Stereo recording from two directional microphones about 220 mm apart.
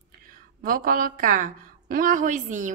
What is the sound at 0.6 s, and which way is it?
A woman's voice, 40° right (ahead or behind).